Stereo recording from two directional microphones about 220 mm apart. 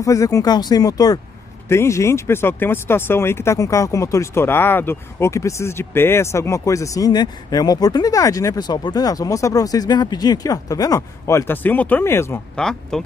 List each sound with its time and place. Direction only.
0.0 s speech: 15° left (ahead or behind)